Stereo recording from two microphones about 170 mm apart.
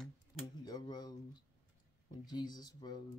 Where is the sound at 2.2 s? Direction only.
25° left (ahead or behind).